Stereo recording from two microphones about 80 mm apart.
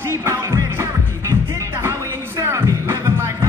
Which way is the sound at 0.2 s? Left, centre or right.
Right.